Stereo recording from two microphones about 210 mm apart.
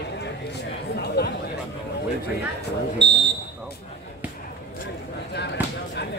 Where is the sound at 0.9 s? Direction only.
50° left (ahead or behind).